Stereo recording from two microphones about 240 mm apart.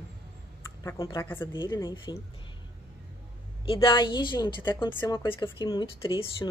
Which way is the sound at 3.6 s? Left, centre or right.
Centre.